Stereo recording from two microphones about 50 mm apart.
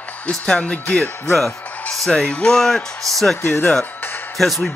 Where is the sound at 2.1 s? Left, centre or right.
Centre.